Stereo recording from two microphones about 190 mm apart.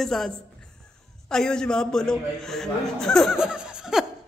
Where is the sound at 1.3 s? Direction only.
5° left (ahead or behind).